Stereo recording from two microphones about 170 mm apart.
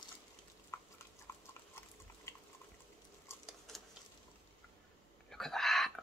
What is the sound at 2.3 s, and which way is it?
Water, 15° left (ahead or behind).